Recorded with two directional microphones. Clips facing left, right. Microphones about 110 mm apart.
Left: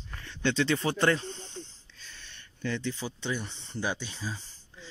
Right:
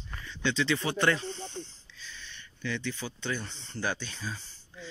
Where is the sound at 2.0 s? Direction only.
50° left (ahead or behind).